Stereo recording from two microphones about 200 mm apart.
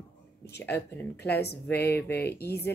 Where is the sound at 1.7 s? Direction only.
10° left (ahead or behind).